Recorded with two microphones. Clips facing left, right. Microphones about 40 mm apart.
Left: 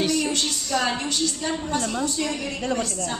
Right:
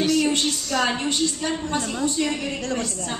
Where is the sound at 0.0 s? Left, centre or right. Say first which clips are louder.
Right 3 dB; centre.